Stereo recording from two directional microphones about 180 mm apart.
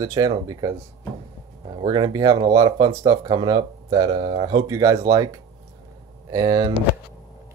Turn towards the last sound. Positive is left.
turn(degrees=-20)  # may be behind; listen again after turning